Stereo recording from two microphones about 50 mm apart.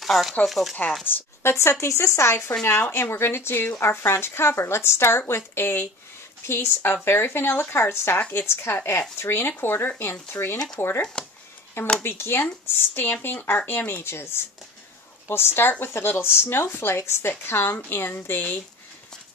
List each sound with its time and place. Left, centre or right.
0.0 s speech: centre
1.0 s speech: left
1.5 s speech: left
11.2 s a sound: centre
12.0 s speech: left